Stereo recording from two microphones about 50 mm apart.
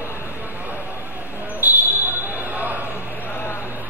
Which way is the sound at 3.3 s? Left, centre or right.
Left.